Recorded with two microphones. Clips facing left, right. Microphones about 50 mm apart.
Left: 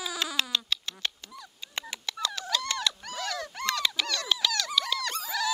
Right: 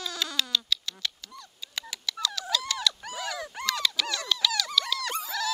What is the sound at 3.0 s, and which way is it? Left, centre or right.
Dog, centre.